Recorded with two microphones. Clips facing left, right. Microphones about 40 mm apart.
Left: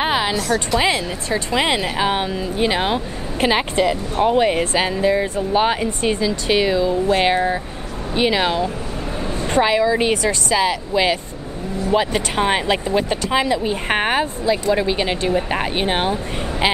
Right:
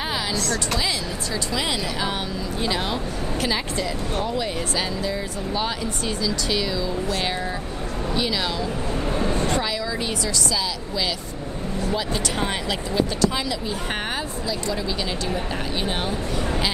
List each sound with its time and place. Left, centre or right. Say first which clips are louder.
0.0 s a sound: left 8 dB; left
0.3 s a woman's voice: left 6 dB; centre
0.7 s speech: left 7 dB; left